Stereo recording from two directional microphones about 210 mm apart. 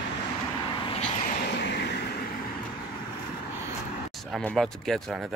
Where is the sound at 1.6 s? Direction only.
55° left (ahead or behind).